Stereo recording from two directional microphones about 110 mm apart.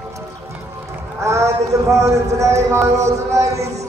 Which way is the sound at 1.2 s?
30° right (ahead or behind).